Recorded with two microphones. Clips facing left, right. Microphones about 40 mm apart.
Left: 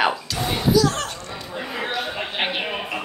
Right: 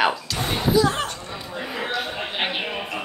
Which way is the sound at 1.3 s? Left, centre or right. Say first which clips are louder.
Even; centre.